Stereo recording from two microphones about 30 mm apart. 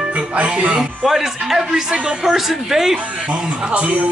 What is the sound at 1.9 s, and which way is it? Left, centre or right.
Speech, right.